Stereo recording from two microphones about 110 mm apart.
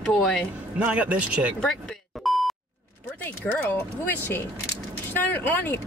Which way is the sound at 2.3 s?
Centre (ahead or behind).